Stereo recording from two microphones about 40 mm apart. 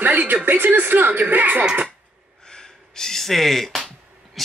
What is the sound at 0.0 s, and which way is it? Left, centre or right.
Speech, right.